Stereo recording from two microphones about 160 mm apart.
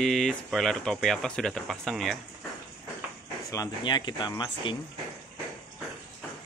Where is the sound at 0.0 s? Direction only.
5° left (ahead or behind).